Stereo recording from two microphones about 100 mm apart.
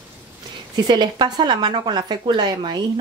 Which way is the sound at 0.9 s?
50° right (ahead or behind).